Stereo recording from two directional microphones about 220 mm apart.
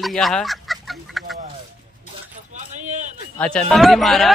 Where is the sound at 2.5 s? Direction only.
35° right (ahead or behind).